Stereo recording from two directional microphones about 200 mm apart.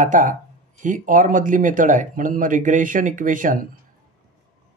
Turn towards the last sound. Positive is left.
turn(degrees=-40)  # may be behind; listen again after turning